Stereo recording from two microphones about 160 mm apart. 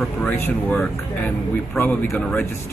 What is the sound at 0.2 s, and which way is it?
Speech, 10° left (ahead or behind).